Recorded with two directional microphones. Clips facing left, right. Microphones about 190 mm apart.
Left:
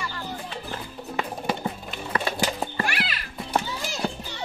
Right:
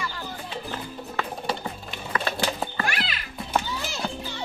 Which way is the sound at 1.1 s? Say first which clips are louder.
Left 2 dB; 15° left (ahead or behind).